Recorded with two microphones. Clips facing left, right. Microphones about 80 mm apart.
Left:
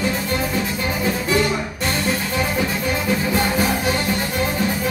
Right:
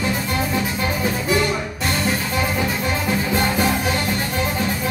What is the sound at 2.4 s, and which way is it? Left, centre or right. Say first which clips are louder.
Music: even; right.